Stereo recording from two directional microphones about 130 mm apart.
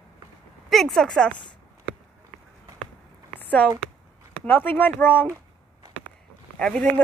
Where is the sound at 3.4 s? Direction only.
10° left (ahead or behind).